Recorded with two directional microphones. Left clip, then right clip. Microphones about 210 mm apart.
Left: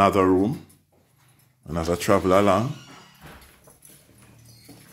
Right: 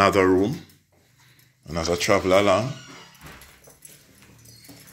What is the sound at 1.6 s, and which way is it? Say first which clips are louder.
Speech: right 1 dB; 35° left (ahead or behind).